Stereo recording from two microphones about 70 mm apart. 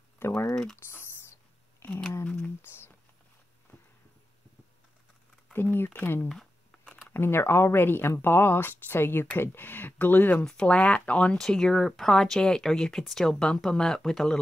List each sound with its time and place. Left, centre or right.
0.2 s typing: left
1.8 s a sound: left
5.5 s a sound: left
5.9 s speech: left
10.4 s speech: centre
11.3 s speech: centre